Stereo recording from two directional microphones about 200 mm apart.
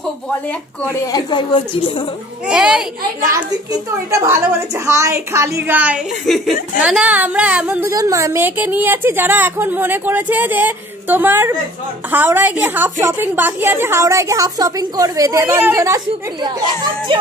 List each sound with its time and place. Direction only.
1.0 s speech: 20° left (ahead or behind)
2.4 s a child's voice: 5° right (ahead or behind)
4.1 s a woman's voice: 15° right (ahead or behind)
17.1 s music: 25° right (ahead or behind)